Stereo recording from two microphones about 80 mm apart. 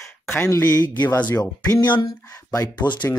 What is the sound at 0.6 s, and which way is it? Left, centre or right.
Speech, left.